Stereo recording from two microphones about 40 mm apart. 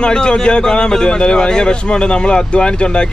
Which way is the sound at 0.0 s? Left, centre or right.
Left.